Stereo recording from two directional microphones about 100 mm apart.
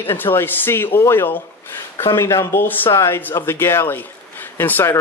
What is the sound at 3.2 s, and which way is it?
Speech, 20° left (ahead or behind).